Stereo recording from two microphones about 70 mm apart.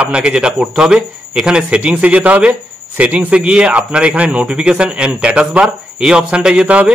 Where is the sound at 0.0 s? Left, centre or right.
Centre.